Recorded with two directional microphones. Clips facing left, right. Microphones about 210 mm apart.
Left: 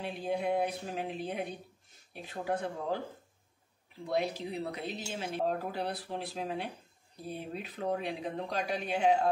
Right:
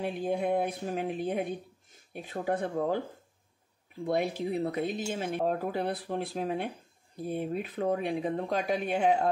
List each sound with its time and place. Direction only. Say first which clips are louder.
0.0 s speech: right 3 dB; 50° right (ahead or behind)
4.0 s speech: right 4 dB; 50° right (ahead or behind)